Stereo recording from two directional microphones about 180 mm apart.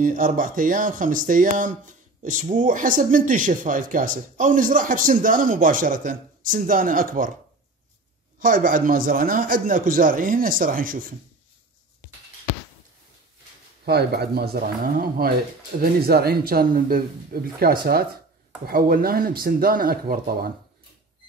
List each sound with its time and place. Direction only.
0.0 s speech: 45° right (ahead or behind)
8.4 s speech: 50° right (ahead or behind)
13.8 s speech: 65° right (ahead or behind)